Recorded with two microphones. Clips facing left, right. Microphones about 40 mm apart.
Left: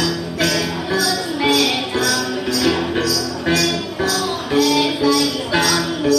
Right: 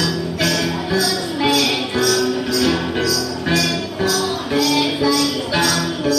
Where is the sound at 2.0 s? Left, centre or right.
Centre.